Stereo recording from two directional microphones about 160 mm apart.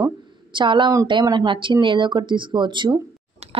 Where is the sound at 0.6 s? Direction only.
30° right (ahead or behind).